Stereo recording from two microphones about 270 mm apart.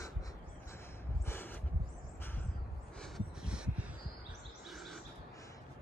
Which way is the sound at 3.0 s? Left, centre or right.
Centre.